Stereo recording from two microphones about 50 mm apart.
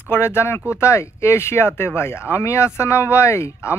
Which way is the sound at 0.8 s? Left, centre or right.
Left.